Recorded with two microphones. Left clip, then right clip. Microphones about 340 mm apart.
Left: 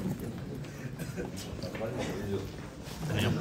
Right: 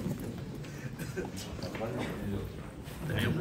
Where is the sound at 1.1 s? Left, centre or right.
Centre.